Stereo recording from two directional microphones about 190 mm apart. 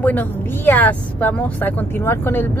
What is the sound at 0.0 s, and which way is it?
Speech, 10° left (ahead or behind).